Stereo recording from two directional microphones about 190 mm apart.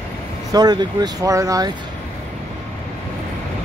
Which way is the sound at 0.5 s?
20° right (ahead or behind).